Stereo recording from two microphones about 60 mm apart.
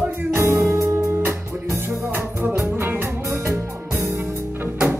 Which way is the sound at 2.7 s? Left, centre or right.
Right.